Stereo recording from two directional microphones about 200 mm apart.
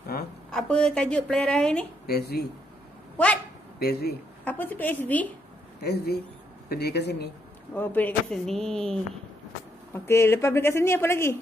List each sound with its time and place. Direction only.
0.5 s speech: 5° left (ahead or behind)
2.0 s speech: 50° left (ahead or behind)
3.8 s speech: 50° left (ahead or behind)
4.5 s a woman's voice: 10° left (ahead or behind)
5.8 s speech: 55° left (ahead or behind)
7.7 s a woman's voice: 10° left (ahead or behind)